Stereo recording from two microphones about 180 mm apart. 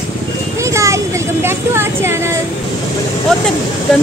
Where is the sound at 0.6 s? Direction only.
15° right (ahead or behind).